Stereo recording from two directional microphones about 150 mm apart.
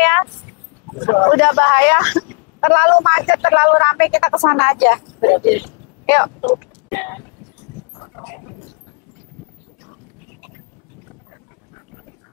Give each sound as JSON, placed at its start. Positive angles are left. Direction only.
{"t": 0.0, "sound": "a sound", "side_deg": 10}
{"t": 0.9, "sound": "a man's voice", "side_deg": 15}
{"t": 8.2, "sound": "dog", "side_deg": 15}